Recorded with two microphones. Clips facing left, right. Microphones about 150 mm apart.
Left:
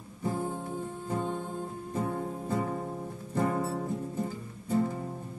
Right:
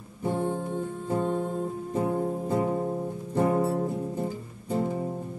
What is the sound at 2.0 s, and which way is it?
Music, 25° right (ahead or behind).